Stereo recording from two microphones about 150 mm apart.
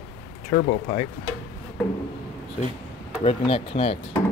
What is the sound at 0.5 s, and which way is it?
Speech, 50° left (ahead or behind).